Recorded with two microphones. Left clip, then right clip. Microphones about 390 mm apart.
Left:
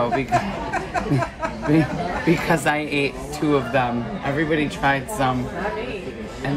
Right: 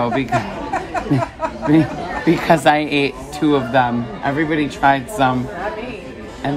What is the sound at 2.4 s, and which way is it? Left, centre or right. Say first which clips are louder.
Speech: right 7 dB; right.